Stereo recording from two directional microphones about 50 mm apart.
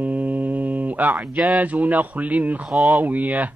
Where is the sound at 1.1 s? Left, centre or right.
Centre.